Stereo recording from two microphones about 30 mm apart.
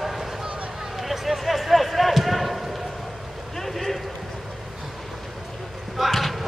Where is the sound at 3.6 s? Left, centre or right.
Centre.